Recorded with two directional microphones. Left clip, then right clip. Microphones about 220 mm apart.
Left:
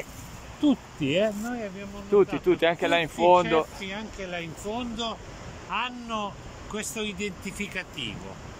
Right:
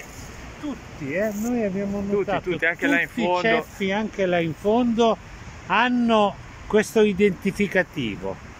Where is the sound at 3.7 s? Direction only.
30° right (ahead or behind).